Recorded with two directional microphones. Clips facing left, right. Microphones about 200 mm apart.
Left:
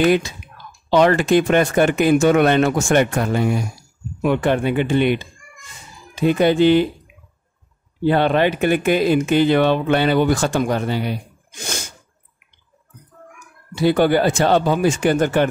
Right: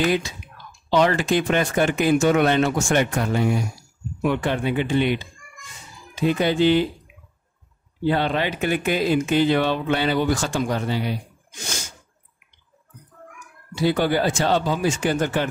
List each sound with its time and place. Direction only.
0.0 s speech: 55° left (ahead or behind)
8.0 s speech: 55° left (ahead or behind)
13.7 s speech: 60° left (ahead or behind)